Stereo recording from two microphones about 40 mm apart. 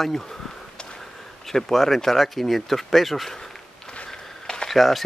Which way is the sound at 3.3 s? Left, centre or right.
Centre.